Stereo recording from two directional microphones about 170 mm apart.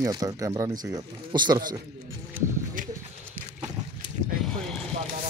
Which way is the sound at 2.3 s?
50° right (ahead or behind).